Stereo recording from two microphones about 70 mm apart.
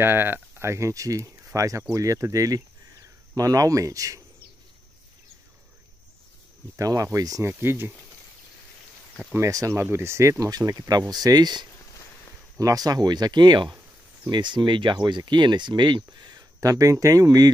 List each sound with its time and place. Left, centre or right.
0.0 s speech: right
6.8 s speech: right
7.4 s speech: right
9.4 s speech: right
9.8 s speech: right
10.6 s speech: right
12.5 s speech: right
16.6 s speech: right